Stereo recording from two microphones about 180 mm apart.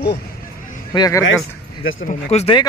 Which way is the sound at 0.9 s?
20° left (ahead or behind).